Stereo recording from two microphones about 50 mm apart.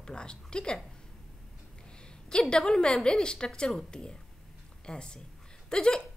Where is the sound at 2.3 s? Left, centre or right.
Centre.